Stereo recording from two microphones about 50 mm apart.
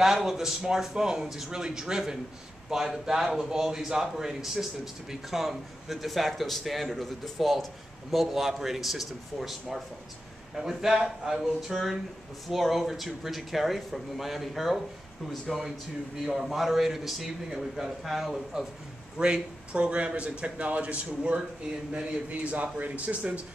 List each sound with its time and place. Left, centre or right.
0.0 s a man's voice: centre
19.1 s speech: centre